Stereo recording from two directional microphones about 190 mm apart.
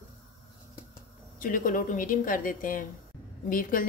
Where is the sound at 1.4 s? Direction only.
45° left (ahead or behind).